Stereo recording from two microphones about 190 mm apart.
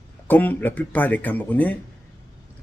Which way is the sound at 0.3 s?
10° left (ahead or behind).